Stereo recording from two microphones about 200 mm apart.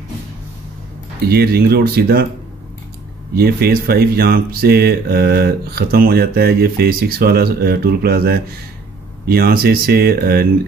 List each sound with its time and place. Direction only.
1.3 s speech: 50° right (ahead or behind)
3.3 s speech: 50° right (ahead or behind)